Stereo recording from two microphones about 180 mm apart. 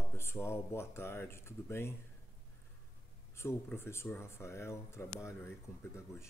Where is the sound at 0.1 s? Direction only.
15° left (ahead or behind).